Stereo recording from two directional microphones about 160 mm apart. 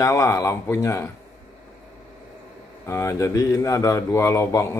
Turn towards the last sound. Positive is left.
turn(degrees=20)  # may be behind; listen again after turning